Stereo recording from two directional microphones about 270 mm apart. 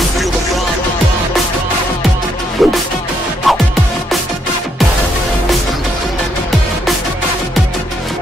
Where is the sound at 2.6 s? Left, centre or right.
Centre.